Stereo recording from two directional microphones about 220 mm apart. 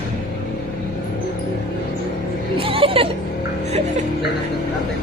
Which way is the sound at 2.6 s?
25° right (ahead or behind).